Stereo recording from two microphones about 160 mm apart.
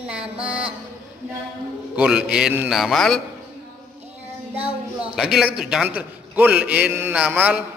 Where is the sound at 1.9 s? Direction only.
5° right (ahead or behind).